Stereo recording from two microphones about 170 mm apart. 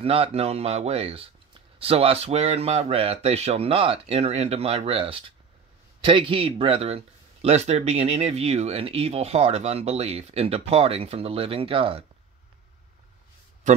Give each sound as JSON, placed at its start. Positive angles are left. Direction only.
{"t": 0.0, "sound": "speech", "side_deg": -35}